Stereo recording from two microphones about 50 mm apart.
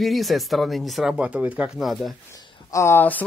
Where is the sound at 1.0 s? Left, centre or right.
Right.